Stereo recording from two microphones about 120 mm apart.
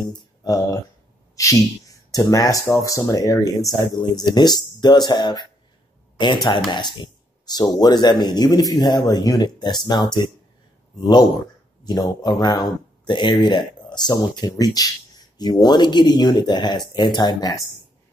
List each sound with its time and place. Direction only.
0.0 s speech: 35° left (ahead or behind)